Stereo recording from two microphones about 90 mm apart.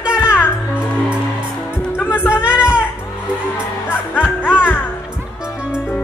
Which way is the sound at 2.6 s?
10° right (ahead or behind).